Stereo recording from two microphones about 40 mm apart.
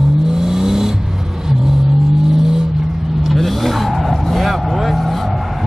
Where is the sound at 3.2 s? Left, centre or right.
Centre.